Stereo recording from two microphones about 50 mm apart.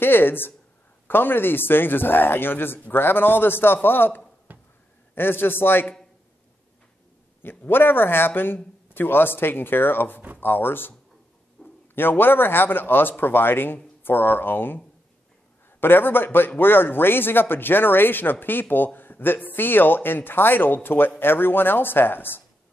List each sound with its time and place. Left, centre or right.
0.0 s speech: left
4.5 s a sound: right
5.1 s speech: left
7.4 s speech: left
11.6 s a sound: centre
11.9 s speech: left
15.8 s speech: left